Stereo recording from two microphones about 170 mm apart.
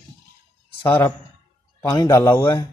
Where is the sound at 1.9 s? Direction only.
20° left (ahead or behind).